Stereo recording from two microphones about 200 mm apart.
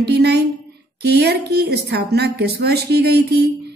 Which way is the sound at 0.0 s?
55° right (ahead or behind).